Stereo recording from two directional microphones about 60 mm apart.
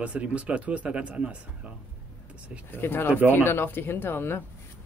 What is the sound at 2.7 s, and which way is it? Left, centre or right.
Speech, left.